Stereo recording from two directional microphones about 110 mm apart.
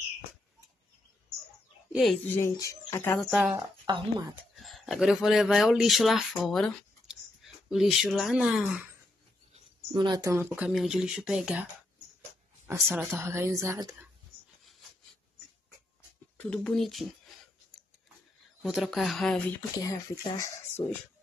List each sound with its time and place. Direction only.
1.9 s speech: 5° right (ahead or behind)
2.2 s speech: 20° left (ahead or behind)
3.8 s speech: 40° right (ahead or behind)
4.6 s speech: centre (ahead or behind)
7.7 s speech: 5° right (ahead or behind)
9.9 s speech: 45° right (ahead or behind)
10.2 s a woman's voice: 20° right (ahead or behind)
10.7 s speech: 5° right (ahead or behind)
12.9 s a woman's voice: 20° right (ahead or behind)
16.3 s speech: 10° left (ahead or behind)
17.3 s a sound: centre (ahead or behind)
18.6 s speech: centre (ahead or behind)
19.8 s speech: 30° left (ahead or behind)